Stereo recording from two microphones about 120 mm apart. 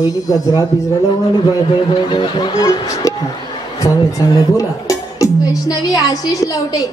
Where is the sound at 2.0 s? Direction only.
40° left (ahead or behind).